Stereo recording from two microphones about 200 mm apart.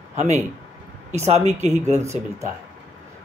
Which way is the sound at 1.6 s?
35° right (ahead or behind).